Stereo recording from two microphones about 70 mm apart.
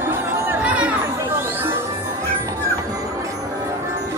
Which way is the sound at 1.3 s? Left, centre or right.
Right.